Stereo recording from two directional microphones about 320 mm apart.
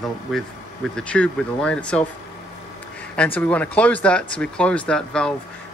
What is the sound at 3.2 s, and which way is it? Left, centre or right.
Speech, centre.